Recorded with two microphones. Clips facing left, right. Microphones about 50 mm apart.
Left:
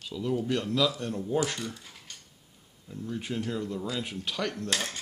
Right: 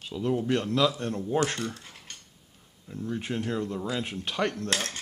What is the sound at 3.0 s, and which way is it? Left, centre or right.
A man's voice, right.